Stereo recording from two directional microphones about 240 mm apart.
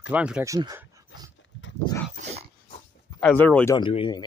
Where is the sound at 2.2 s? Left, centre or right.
Right.